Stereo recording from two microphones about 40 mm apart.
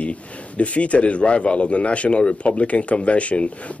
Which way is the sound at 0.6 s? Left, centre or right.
Left.